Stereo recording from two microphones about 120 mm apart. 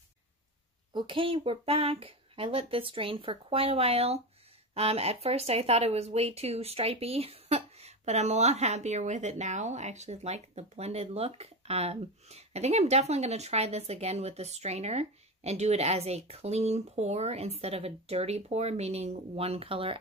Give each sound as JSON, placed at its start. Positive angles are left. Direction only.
{"t": 0.9, "sound": "speech", "side_deg": -45}